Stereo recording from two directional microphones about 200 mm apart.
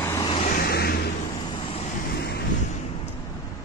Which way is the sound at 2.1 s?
55° left (ahead or behind).